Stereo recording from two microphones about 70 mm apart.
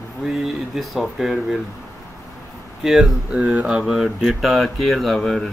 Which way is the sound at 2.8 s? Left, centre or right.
Centre.